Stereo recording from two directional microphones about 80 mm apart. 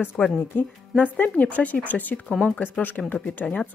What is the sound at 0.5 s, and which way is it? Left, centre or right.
A woman's voice, left.